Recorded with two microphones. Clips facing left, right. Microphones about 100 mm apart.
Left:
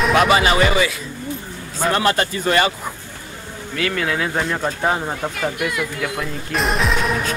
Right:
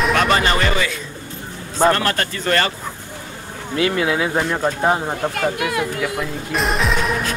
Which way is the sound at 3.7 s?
20° right (ahead or behind).